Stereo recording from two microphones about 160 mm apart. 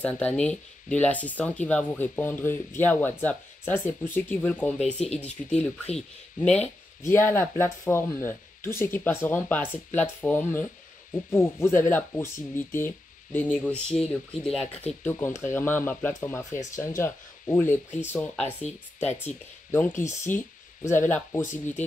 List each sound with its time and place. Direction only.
0.0 s speech: 10° left (ahead or behind)
7.0 s speech: 15° left (ahead or behind)
15.0 s speech: 15° left (ahead or behind)